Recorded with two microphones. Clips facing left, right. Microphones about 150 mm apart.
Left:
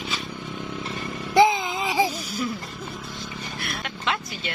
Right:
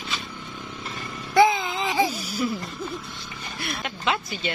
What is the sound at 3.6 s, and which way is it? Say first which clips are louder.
Speech: right 3 dB; centre (ahead or behind).